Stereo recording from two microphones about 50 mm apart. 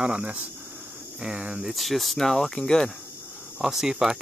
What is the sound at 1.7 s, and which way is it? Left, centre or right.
Speech, centre.